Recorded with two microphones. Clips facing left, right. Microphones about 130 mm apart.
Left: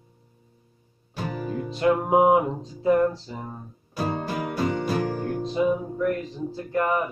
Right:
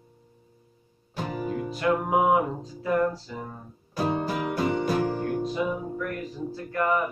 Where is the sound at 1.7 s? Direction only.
25° left (ahead or behind).